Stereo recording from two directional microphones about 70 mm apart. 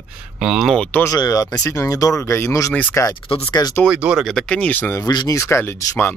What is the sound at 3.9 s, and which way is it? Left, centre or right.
Speech, centre.